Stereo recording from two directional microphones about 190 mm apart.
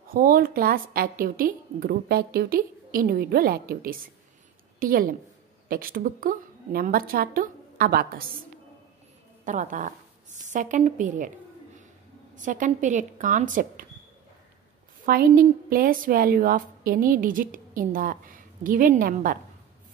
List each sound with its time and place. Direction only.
0.1 s a woman's voice: 50° right (ahead or behind)
9.4 s a woman's voice: 40° right (ahead or behind)
12.4 s a woman's voice: 40° right (ahead or behind)
15.1 s a woman's voice: 50° right (ahead or behind)